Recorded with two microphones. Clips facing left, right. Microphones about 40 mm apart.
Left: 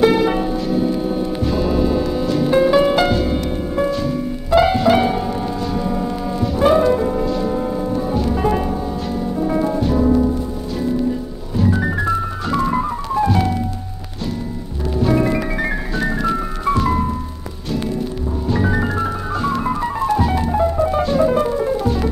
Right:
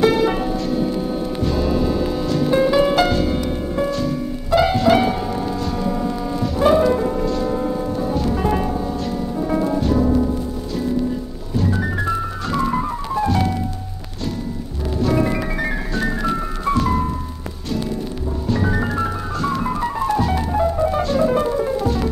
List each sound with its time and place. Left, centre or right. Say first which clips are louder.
0.0 s music: left 2 dB; centre
5.8 s wind instrument: left 1 dB; centre
6.9 s music: left 2 dB; centre
11.5 s music: left 3 dB; centre
15.0 s music: left 2 dB; centre
18.5 s music: left 1 dB; centre